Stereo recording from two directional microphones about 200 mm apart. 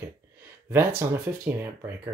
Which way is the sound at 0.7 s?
10° right (ahead or behind).